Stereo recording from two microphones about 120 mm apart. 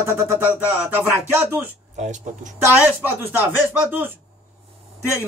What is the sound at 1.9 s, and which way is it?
Speech, 80° right.